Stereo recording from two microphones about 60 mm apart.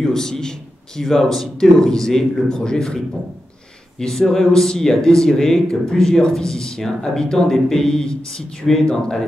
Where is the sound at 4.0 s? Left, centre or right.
Centre.